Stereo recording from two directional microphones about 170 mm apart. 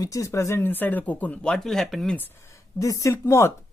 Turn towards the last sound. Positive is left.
turn(degrees=15)  # may be behind; listen again after turning